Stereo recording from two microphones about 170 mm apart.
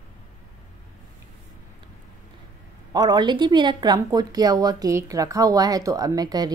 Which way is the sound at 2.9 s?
25° right (ahead or behind).